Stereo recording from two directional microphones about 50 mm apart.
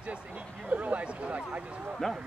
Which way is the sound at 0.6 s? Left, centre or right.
Right.